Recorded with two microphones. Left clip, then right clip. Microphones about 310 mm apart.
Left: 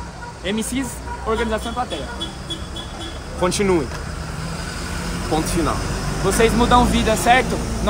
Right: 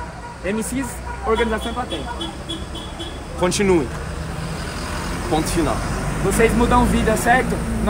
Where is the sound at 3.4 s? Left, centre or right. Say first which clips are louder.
Right 1 dB; centre.